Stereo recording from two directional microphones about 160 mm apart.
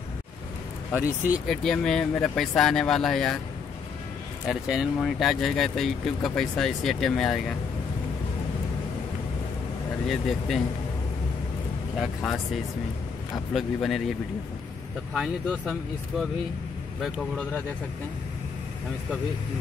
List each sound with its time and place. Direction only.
0.9 s speech: 10° right (ahead or behind)
1.5 s speech: centre (ahead or behind)
4.5 s speech: 5° right (ahead or behind)
10.0 s speech: centre (ahead or behind)
12.0 s speech: 5° left (ahead or behind)
13.5 s speech: centre (ahead or behind)
15.1 s speech: 5° right (ahead or behind)